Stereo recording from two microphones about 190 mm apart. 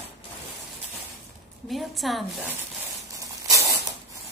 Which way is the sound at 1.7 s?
Centre (ahead or behind).